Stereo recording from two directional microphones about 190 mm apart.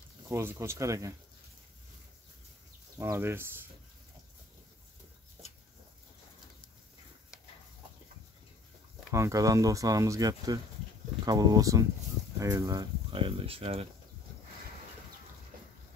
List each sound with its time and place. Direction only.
0.3 s speech: 15° right (ahead or behind)
3.0 s speech: 15° right (ahead or behind)
9.1 s speech: 15° right (ahead or behind)